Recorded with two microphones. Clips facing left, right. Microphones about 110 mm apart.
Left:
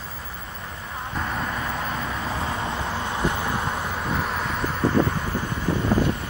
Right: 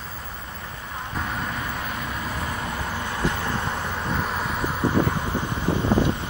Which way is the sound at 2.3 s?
25° left (ahead or behind).